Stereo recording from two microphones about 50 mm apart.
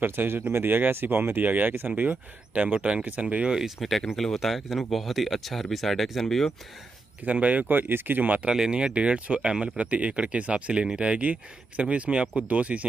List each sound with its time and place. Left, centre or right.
0.0 s speech: right
0.7 s speech: right
3.8 s speech: centre
7.2 s speech: right
8.5 s speech: centre